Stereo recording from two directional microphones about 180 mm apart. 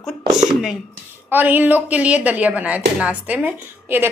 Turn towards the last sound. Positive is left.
turn(degrees=-10)  # may be behind; listen again after turning